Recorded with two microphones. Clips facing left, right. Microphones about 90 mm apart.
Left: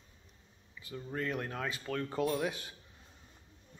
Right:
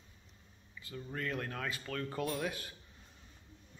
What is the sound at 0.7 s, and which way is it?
Speech, 20° left (ahead or behind).